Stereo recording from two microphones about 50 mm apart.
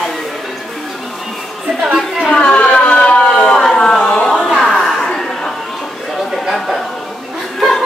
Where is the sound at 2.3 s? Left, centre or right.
Centre.